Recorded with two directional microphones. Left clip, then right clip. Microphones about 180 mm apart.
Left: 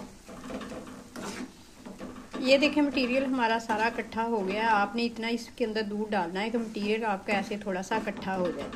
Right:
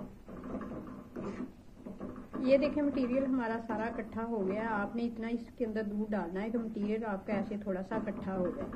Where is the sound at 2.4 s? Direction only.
50° left (ahead or behind).